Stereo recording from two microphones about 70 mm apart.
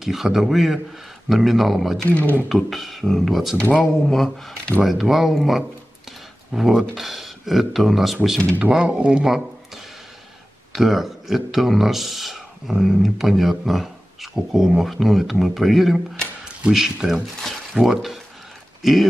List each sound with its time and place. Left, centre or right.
0.0 s speech: centre
2.0 s speech: left
2.5 s speech: centre
8.5 s speech: centre
10.7 s speech: centre